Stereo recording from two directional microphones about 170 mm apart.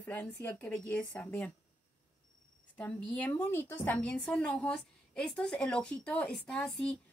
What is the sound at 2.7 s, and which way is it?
A woman's voice, 10° left (ahead or behind).